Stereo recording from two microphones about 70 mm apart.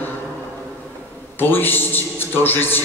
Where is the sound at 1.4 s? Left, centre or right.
Left.